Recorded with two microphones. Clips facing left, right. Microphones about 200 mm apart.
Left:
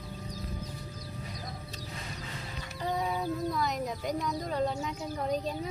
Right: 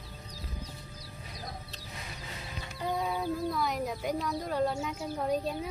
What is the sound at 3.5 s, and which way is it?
Speech, centre (ahead or behind).